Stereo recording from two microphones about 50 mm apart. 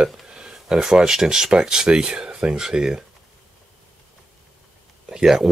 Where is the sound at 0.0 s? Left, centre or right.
Centre.